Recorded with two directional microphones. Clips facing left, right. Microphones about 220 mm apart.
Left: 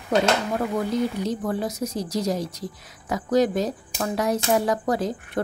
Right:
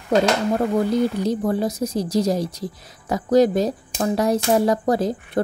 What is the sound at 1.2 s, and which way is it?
Speech, 30° right (ahead or behind).